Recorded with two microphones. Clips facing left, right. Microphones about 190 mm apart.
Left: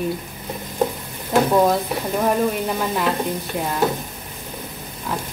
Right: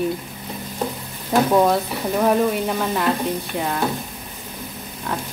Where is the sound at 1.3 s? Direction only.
Centre (ahead or behind).